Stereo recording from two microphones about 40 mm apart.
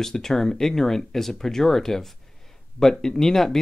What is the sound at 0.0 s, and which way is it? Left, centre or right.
Speech, centre.